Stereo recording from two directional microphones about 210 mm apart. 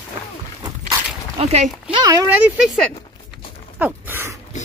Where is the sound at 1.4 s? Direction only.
30° right (ahead or behind).